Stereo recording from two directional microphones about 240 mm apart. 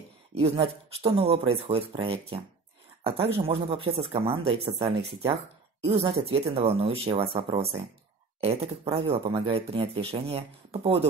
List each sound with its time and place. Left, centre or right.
0.3 s speech: right